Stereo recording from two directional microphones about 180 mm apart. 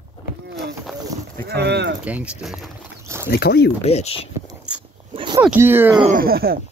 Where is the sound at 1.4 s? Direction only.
70° right (ahead or behind).